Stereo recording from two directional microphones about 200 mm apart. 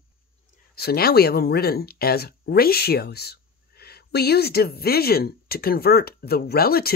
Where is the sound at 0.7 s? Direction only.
50° left (ahead or behind).